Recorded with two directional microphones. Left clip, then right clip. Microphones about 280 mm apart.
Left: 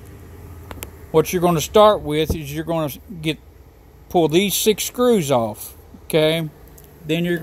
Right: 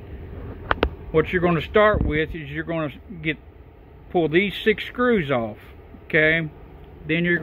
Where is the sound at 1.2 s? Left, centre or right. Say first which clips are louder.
Left 3 dB; left.